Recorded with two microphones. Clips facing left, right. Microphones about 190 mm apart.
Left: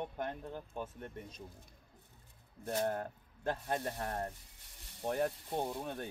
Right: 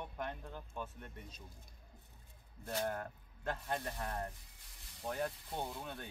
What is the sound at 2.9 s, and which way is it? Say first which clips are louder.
Speech: left 4 dB; 35° left (ahead or behind).